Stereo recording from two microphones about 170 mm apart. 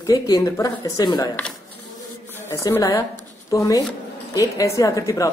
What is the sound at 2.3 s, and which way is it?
A woman's voice, 15° left (ahead or behind).